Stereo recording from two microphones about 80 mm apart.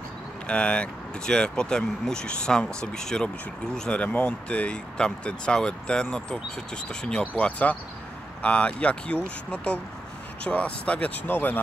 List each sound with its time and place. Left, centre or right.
0.5 s speech: centre